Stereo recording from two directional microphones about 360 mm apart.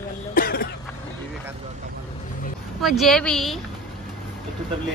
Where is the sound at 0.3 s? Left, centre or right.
Left.